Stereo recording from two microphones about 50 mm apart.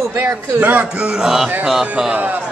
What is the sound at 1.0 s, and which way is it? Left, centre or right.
Speech, centre.